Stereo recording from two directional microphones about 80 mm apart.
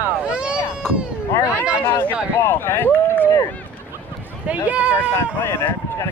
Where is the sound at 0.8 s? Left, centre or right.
Centre.